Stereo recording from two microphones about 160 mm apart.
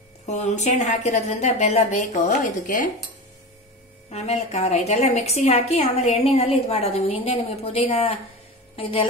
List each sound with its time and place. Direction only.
0.3 s a woman's voice: 45° left (ahead or behind)
4.1 s a woman's voice: 40° left (ahead or behind)